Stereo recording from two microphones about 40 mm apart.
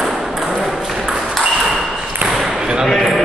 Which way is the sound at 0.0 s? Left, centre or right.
Centre.